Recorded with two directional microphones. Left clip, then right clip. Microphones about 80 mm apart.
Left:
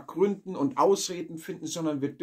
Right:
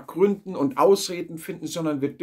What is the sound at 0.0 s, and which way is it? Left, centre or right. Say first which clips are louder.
Speech: right 5 dB; right.